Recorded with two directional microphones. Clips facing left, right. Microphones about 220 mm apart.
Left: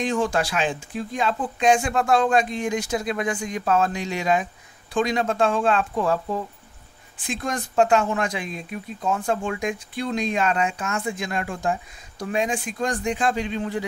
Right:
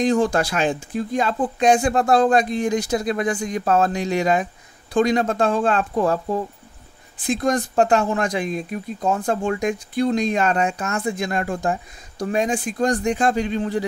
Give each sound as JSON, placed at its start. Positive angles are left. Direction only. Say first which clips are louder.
{"t": 0.0, "sound": "speech", "louder": "right 5 dB", "side_deg": -35}